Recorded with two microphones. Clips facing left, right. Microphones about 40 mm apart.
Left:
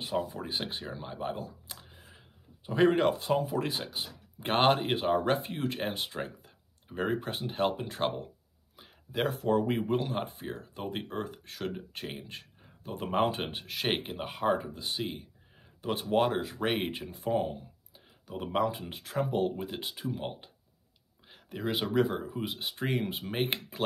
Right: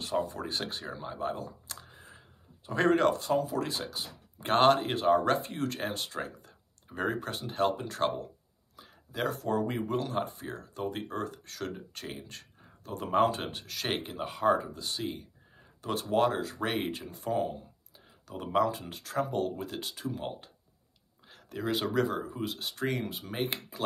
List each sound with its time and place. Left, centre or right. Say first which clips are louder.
0.3 s speech: even; centre; by 23.8 s left